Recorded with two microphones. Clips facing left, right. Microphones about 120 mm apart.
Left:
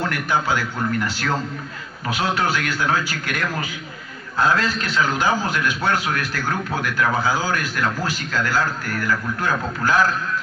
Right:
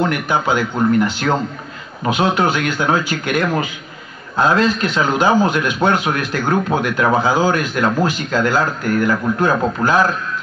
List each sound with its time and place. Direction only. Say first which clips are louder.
0.0 s a man's voice: right 5 dB; 20° right (ahead or behind)